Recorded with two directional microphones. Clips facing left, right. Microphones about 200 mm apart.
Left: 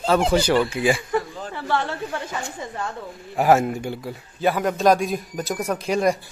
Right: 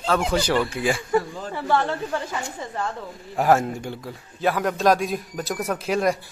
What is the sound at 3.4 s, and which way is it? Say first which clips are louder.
Speech: left 2 dB; 5° left (ahead or behind).